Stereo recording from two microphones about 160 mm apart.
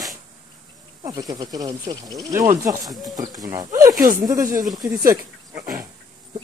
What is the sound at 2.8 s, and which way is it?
Speech, centre (ahead or behind).